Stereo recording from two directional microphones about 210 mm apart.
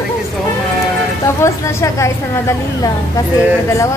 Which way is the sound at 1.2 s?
15° left (ahead or behind).